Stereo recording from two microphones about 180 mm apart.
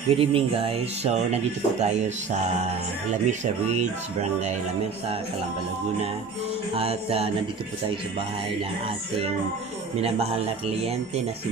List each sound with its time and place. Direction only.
0.1 s speech: 30° right (ahead or behind)
3.3 s speech: 40° right (ahead or behind)
6.8 s speech: 30° right (ahead or behind)
9.9 s speech: 35° right (ahead or behind)